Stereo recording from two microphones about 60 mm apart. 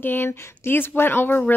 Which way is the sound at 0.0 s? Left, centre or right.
Left.